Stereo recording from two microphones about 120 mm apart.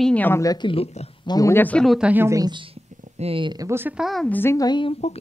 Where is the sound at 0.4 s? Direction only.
30° left (ahead or behind).